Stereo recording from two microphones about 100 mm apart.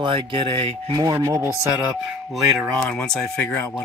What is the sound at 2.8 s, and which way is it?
Speech, 15° left (ahead or behind).